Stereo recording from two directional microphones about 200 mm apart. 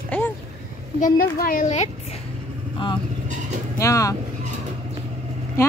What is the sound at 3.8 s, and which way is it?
Speech, 15° left (ahead or behind).